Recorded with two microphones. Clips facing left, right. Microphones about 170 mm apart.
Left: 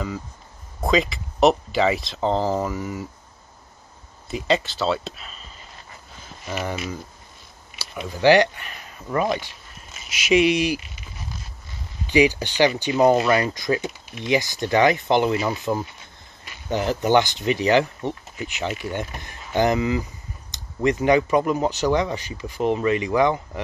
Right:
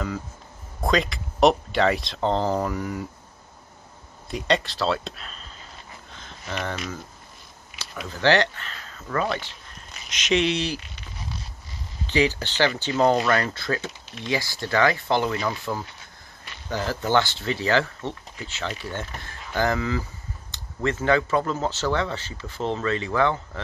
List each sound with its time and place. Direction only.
0.7 s speech: centre (ahead or behind)
4.3 s speech: centre (ahead or behind)
6.1 s a sound: 10° left (ahead or behind)
8.1 s speech: 15° left (ahead or behind)
12.1 s speech: 15° left (ahead or behind)